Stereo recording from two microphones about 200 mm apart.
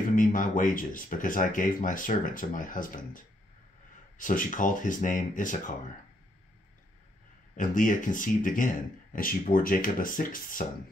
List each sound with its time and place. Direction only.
0.1 s speech: 40° left (ahead or behind)
7.5 s speech: 40° left (ahead or behind)